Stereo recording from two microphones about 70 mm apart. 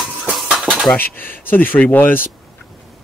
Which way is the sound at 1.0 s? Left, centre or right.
Left.